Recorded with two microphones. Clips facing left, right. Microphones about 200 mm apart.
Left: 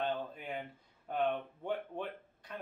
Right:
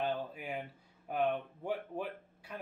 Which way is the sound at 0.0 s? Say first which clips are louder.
Right 1 dB; 5° right (ahead or behind).